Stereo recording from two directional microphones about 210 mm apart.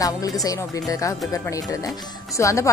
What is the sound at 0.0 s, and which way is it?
Speech, 15° left (ahead or behind).